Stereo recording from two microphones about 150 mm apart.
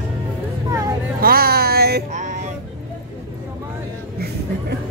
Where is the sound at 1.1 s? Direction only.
85° right.